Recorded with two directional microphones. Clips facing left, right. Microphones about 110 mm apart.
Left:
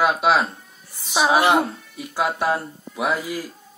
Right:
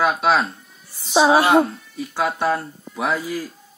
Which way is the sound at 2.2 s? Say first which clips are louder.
Right 1 dB; 5° left (ahead or behind).